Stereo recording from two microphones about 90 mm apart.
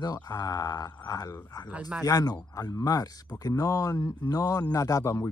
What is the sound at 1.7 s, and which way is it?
Speech, 15° right (ahead or behind).